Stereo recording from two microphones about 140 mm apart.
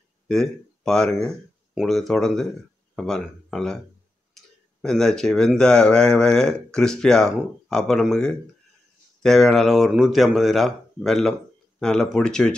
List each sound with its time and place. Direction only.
0.3 s speech: 5° left (ahead or behind)
4.4 s tick-tock: centre (ahead or behind)
4.8 s speech: 5° left (ahead or behind)